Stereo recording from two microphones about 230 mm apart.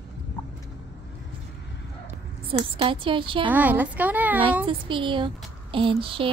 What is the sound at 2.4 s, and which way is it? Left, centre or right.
Speech, right.